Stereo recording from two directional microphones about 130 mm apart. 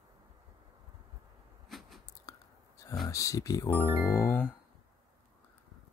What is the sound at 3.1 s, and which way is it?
Speech, 25° left (ahead or behind).